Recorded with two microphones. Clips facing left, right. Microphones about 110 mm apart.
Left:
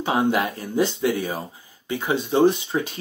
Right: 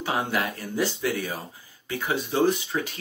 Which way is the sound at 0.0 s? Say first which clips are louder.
Left 6 dB; 20° left (ahead or behind).